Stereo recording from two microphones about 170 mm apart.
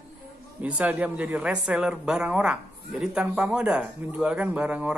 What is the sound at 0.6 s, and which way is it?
Speech, 10° right (ahead or behind).